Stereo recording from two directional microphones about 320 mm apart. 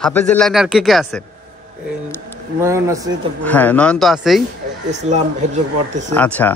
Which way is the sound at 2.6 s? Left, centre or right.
Centre.